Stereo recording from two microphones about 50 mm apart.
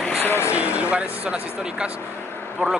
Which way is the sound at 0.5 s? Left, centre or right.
Right.